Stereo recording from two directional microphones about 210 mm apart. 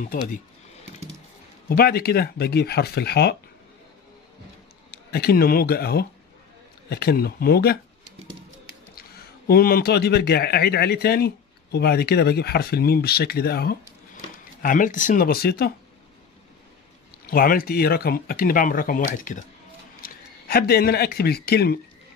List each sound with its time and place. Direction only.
0.0 s speech: 40° left (ahead or behind)
1.7 s speech: 45° left (ahead or behind)
4.9 s speech: 50° left (ahead or behind)
9.5 s speech: 45° left (ahead or behind)
17.3 s a man's voice: 45° left (ahead or behind)